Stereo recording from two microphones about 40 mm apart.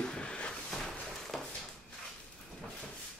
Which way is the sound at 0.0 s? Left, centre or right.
Left.